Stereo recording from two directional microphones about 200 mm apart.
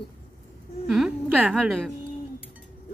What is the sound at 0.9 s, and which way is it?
A woman's voice, centre (ahead or behind).